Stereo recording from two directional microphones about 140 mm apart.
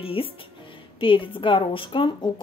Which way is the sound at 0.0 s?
40° left (ahead or behind).